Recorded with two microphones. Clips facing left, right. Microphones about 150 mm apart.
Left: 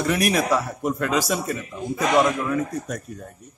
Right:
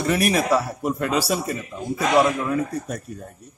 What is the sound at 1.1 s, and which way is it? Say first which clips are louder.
Speech: right 1 dB; 35° right (ahead or behind).